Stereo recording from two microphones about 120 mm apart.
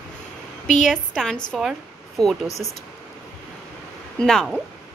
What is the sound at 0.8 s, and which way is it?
A woman's voice, centre (ahead or behind).